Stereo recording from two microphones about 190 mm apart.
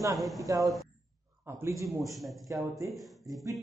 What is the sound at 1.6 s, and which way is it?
Speech, 15° right (ahead or behind).